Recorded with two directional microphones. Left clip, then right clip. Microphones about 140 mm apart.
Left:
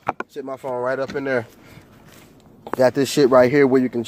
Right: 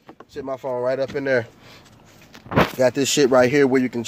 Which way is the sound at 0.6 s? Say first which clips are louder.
Even; 10° right (ahead or behind).